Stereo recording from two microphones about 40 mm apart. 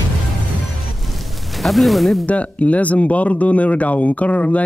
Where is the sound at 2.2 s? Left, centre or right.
Left.